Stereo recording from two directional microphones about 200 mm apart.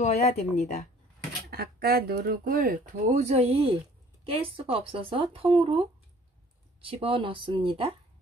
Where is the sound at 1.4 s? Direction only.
50° right (ahead or behind); by 7.9 s 30° right (ahead or behind).